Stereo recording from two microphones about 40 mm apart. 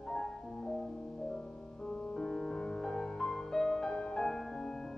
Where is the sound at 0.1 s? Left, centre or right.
Centre.